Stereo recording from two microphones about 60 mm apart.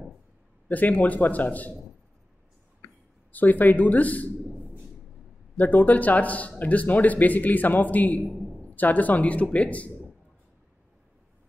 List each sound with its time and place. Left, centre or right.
0.7 s a man's voice: left
3.3 s a man's voice: left
5.6 s a man's voice: left